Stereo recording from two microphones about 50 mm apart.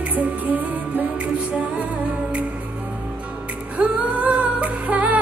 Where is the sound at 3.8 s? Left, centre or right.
Right.